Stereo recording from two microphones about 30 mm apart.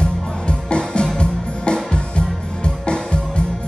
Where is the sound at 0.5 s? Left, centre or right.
Left.